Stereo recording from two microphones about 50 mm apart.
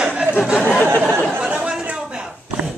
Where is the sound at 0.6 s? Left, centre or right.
Left.